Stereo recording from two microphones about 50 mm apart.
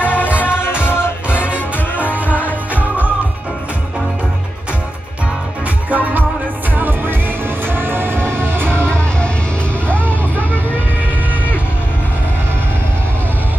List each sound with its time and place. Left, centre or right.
0.0 s music: left
2.3 s music: right
5.9 s music: right
8.5 s music: centre
9.8 s vehicle: left